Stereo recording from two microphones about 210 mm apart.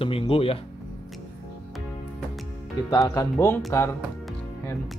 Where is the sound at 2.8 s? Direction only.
15° left (ahead or behind).